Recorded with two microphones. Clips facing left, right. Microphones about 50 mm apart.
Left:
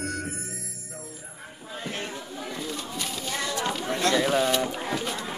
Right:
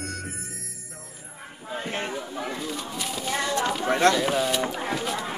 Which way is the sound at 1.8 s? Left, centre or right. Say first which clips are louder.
Right 3 dB; right.